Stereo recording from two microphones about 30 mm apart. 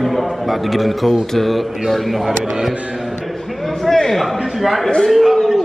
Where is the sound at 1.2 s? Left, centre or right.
Centre.